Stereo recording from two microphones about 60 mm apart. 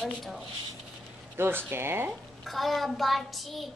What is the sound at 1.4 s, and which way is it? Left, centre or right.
Speech, right.